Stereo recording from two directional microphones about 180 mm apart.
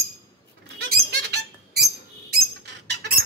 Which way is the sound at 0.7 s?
70° right (ahead or behind).